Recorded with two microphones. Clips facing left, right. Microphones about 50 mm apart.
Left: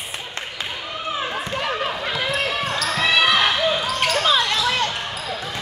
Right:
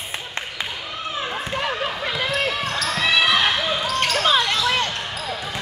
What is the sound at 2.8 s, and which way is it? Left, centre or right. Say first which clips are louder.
Basketball bounce: left 1 dB; centre.